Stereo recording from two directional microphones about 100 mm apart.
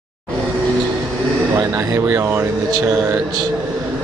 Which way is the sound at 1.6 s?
25° right (ahead or behind).